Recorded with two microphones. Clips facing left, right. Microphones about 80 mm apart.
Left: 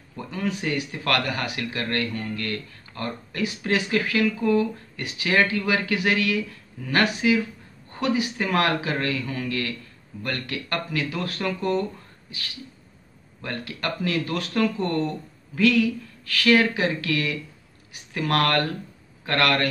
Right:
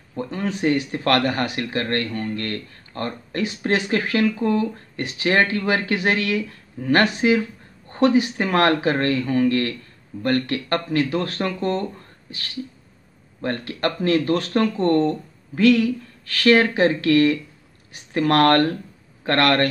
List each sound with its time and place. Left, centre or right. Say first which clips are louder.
0.1 s speech: right 3 dB; right
13.4 s speech: right 7 dB; right